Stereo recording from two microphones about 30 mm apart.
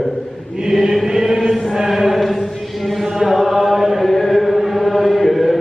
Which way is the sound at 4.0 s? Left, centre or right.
Centre.